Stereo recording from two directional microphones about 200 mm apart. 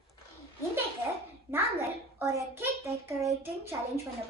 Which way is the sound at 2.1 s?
10° right (ahead or behind).